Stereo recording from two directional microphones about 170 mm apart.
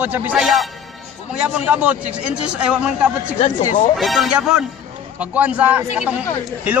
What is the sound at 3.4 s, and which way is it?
Speech, 45° left (ahead or behind).